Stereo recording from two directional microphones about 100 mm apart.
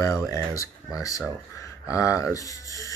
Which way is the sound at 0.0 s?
30° left (ahead or behind).